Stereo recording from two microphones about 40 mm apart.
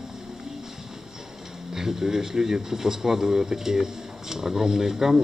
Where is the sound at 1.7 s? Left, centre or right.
Centre.